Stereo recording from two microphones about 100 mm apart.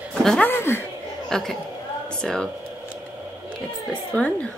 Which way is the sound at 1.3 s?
5° left (ahead or behind).